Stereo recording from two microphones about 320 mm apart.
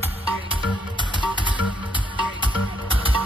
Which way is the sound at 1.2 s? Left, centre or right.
Centre.